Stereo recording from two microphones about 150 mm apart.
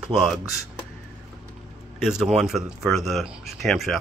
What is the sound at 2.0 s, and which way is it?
Speech, 5° right (ahead or behind).